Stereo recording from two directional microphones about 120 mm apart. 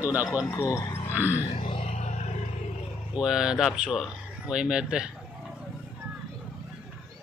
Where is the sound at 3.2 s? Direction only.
5° right (ahead or behind).